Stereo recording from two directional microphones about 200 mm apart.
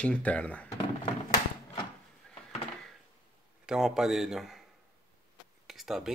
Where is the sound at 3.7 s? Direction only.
5° right (ahead or behind).